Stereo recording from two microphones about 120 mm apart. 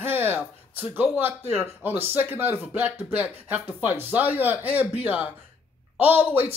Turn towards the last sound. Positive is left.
turn(degrees=-15)  # may be behind; listen again after turning